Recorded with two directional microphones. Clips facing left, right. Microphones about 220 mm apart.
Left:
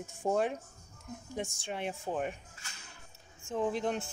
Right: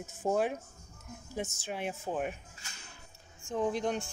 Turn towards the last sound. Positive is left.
turn(degrees=0)  # may be behind; listen again after turning